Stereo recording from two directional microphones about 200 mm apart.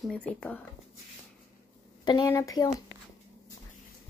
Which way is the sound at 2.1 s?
20° left (ahead or behind).